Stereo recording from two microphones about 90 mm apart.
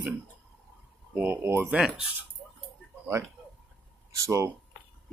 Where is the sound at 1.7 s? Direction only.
5° right (ahead or behind).